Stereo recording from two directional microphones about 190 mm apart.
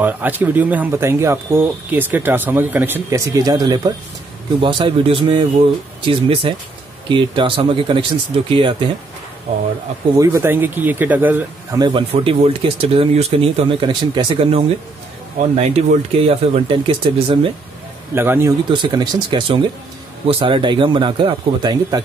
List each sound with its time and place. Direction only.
0.0 s speech: 10° right (ahead or behind); by 9.6 s 35° right (ahead or behind)
10.1 s speech: 15° right (ahead or behind)
11.8 s speech: 25° right (ahead or behind)
18.1 s speech: 10° right (ahead or behind)
18.7 s speech: 25° right (ahead or behind)